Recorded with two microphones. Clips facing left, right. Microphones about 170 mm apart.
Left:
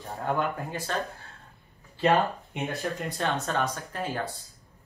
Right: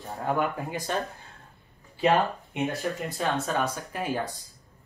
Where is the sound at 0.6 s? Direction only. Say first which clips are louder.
Right 2 dB; 15° right (ahead or behind).